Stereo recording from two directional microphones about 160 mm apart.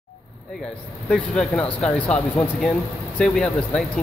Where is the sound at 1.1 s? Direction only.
5° left (ahead or behind).